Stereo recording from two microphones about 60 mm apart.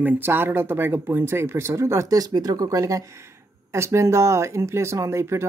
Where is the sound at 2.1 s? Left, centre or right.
Right.